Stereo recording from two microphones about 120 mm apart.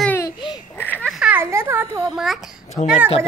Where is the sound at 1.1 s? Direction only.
10° right (ahead or behind).